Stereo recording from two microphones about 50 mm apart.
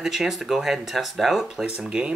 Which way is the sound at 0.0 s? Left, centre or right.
Centre.